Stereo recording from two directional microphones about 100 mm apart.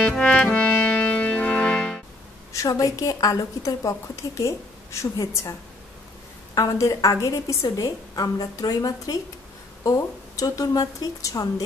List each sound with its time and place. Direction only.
0.0 s music: 10° left (ahead or behind)
2.5 s a woman's voice: 35° left (ahead or behind)